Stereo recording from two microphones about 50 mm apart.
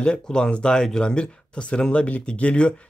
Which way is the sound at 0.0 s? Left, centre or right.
Centre.